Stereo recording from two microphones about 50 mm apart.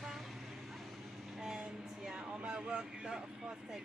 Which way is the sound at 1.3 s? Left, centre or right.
Centre.